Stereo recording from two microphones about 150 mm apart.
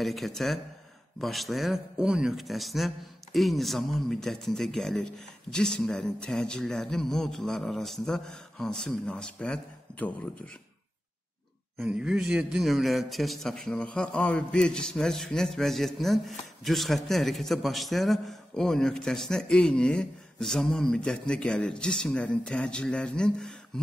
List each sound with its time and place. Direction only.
0.0 s a man's voice: centre (ahead or behind)
11.8 s a man's voice: 5° right (ahead or behind)
23.7 s a sound: 5° left (ahead or behind)